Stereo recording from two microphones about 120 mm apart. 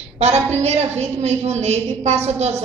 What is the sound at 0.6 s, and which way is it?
A woman's voice, 70° right (ahead or behind).